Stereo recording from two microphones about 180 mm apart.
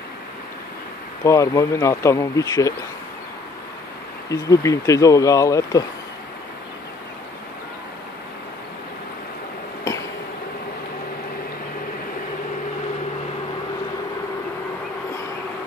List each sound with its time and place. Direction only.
1.2 s speech: 15° left (ahead or behind)
4.3 s speech: 15° left (ahead or behind)